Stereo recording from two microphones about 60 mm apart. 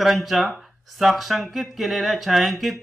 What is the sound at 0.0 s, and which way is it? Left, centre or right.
Speech, centre.